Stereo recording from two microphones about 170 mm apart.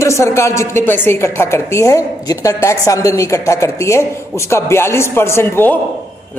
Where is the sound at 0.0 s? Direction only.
15° left (ahead or behind).